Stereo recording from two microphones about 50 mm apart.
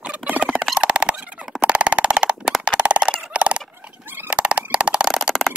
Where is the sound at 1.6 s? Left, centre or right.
Right.